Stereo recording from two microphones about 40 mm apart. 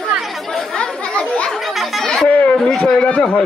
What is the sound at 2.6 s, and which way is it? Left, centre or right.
Speech, left.